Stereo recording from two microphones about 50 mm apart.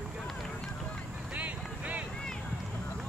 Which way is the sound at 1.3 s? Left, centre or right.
Right.